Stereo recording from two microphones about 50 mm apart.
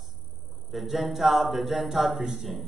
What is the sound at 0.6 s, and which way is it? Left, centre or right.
A man's voice, centre.